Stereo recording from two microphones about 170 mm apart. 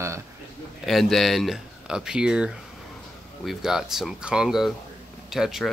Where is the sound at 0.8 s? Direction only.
Centre (ahead or behind).